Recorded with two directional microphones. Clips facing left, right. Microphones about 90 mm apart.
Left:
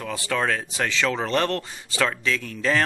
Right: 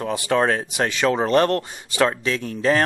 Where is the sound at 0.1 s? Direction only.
20° right (ahead or behind).